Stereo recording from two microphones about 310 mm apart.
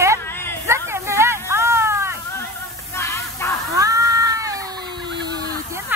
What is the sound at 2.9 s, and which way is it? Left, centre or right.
Music, centre.